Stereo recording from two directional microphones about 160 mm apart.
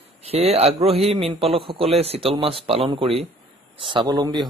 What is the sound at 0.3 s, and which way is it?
A man's voice, 40° right (ahead or behind).